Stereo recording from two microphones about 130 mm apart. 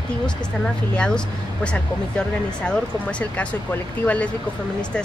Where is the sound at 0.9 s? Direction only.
5° left (ahead or behind).